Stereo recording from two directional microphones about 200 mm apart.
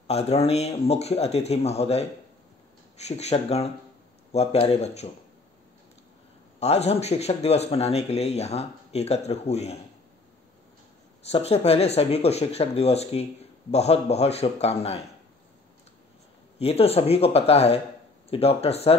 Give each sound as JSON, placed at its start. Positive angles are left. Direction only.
{"t": 0.0, "sound": "speech", "side_deg": 30}
{"t": 6.6, "sound": "speech", "side_deg": 30}
{"t": 11.2, "sound": "speech", "side_deg": 30}
{"t": 16.5, "sound": "speech", "side_deg": 30}